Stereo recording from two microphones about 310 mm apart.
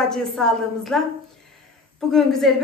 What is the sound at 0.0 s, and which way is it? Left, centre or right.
A woman's voice, centre.